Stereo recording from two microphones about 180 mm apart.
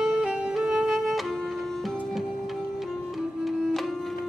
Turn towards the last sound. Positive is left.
turn(degrees=0)  # may be behind; listen again after turning